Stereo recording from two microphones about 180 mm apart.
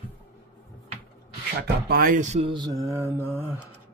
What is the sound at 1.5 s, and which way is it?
Speech, 55° right (ahead or behind).